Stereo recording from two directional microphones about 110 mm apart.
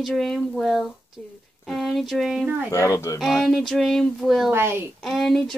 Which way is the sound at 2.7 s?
30° left (ahead or behind).